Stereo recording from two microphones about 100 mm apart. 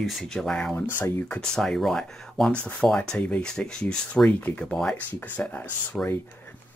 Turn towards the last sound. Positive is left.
turn(degrees=15)  # may be behind; listen again after turning